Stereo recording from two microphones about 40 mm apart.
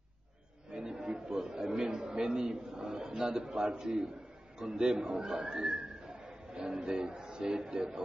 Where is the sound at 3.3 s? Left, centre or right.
Centre.